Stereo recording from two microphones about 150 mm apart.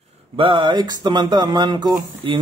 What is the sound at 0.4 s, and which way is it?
Speech, 30° right (ahead or behind).